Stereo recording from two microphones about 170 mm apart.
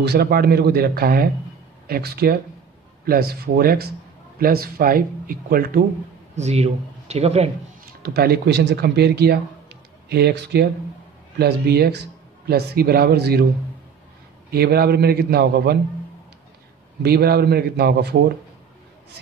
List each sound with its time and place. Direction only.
0.0 s speech: 70° right (ahead or behind)
6.3 s speech: 40° right (ahead or behind)
7.8 s speech: 70° right (ahead or behind)
14.5 s speech: 70° right (ahead or behind)
17.0 s speech: 70° right (ahead or behind)